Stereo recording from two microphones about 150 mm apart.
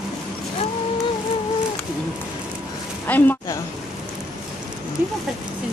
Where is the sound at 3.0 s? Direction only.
15° left (ahead or behind).